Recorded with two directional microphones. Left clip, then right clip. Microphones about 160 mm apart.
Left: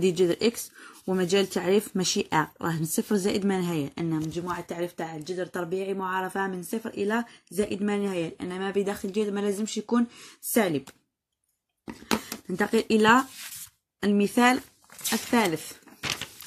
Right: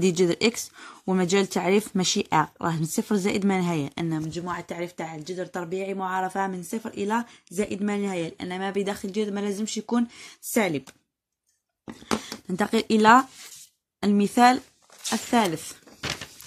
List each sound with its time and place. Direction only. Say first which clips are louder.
0.0 s speech: right 1 dB; 30° right (ahead or behind); by 10.8 s 15° right (ahead or behind)
11.8 s a sound: even; 5° right (ahead or behind)
12.5 s speech: even; 30° right (ahead or behind)